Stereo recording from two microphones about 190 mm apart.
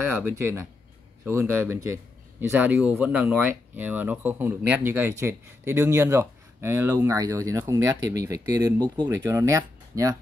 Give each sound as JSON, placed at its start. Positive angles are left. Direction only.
{"t": 0.0, "sound": "speech", "side_deg": -10}